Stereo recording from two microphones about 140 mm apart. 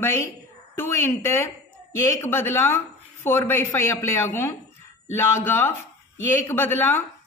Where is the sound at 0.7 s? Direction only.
15° left (ahead or behind).